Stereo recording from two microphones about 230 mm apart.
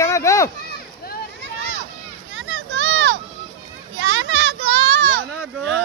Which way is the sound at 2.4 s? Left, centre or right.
Right.